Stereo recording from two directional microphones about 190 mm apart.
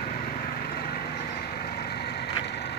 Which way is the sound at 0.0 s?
50° left (ahead or behind).